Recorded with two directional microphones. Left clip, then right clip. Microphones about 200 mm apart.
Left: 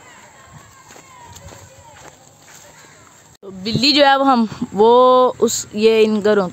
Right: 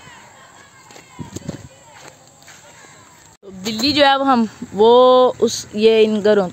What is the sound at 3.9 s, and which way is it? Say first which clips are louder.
Speech: even; 15° left (ahead or behind).